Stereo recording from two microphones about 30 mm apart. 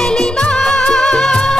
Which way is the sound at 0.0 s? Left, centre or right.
Left.